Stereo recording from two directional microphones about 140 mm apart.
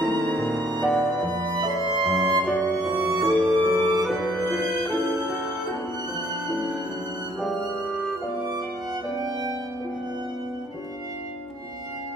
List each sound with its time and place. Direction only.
0.3 s music: centre (ahead or behind)
9.2 s music: 30° right (ahead or behind)